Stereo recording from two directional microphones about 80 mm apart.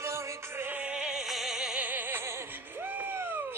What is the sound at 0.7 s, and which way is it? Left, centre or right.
Opera, centre.